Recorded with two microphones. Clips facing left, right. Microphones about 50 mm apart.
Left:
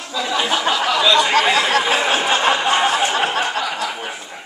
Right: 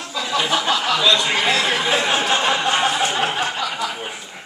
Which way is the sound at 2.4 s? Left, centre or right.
Left.